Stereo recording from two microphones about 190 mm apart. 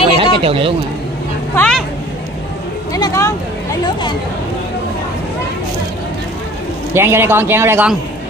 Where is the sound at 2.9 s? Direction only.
15° left (ahead or behind).